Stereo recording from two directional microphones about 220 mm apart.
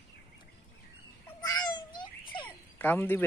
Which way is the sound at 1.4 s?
15° left (ahead or behind).